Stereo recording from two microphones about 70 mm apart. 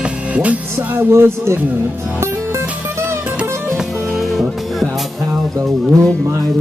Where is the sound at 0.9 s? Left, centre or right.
Right.